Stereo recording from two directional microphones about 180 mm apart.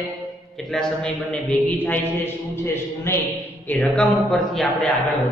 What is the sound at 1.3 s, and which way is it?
A man's voice, 10° left (ahead or behind).